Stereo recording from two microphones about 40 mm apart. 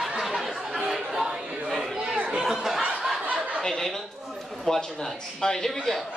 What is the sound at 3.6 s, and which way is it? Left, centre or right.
A man's voice, centre.